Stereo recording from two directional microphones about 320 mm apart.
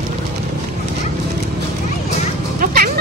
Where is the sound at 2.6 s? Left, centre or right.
Right.